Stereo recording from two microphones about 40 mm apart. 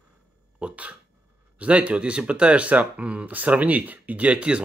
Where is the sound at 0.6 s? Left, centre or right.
Right.